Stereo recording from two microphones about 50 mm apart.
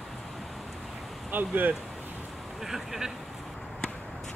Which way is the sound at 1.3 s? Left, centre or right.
Right.